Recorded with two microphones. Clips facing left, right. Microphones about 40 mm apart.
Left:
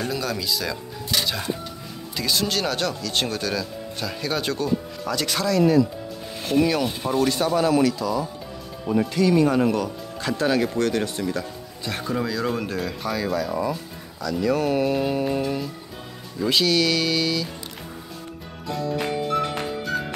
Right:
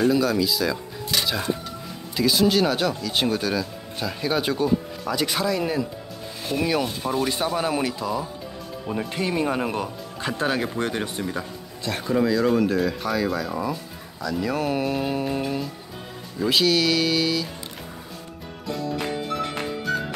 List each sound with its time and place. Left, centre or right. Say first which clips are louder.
0.0 s speech: right 7 dB; centre; by 8.3 s right
8.8 s speech: left 6 dB; centre
9.1 s speech: left 5 dB; right
11.8 s speech: right 4 dB; centre
18.7 s music: left 2 dB; centre